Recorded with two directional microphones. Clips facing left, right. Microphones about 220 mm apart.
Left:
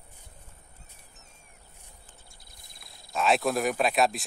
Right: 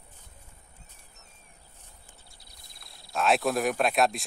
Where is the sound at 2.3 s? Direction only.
50° left (ahead or behind).